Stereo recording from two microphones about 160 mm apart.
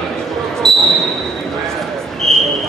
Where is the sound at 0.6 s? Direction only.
Centre (ahead or behind).